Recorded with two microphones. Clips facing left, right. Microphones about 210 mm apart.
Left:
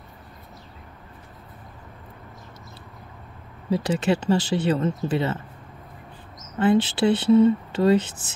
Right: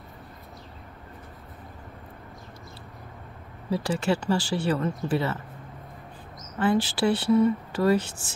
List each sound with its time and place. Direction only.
3.7 s speech: 20° left (ahead or behind)
6.6 s speech: 20° left (ahead or behind)